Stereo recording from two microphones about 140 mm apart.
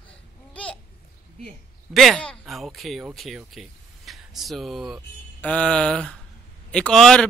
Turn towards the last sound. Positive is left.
turn(degrees=5)  # may be behind; listen again after turning